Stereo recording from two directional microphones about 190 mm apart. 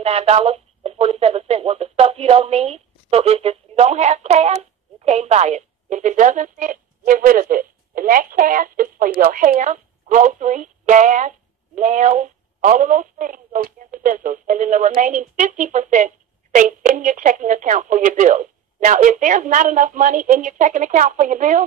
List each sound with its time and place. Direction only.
0.0 s a woman's voice: 30° right (ahead or behind)